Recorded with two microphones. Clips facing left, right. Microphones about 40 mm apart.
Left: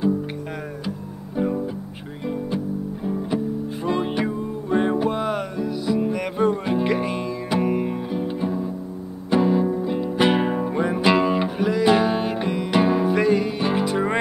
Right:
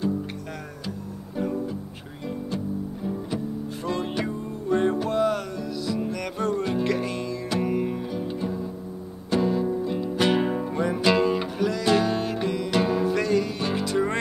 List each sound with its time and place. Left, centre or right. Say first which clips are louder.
0.8 s music: left 3 dB; centre